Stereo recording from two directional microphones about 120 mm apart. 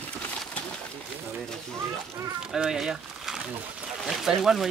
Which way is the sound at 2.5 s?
5° right (ahead or behind).